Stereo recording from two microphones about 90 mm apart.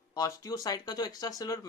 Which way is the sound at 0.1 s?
45° left (ahead or behind).